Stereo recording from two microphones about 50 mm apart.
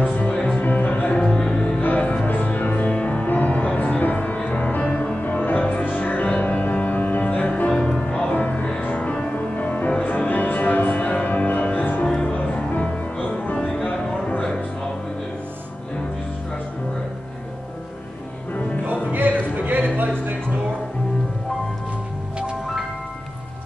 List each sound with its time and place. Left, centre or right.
0.0 s music: left
1.1 s music: centre
2.2 s music: left
12.0 s music: left
19.1 s a sound: right